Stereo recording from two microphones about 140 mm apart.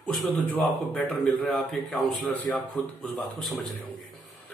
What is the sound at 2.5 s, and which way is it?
A man's voice, 10° left (ahead or behind).